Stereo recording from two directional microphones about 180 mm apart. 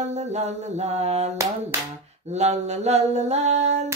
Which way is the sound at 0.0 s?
40° right (ahead or behind).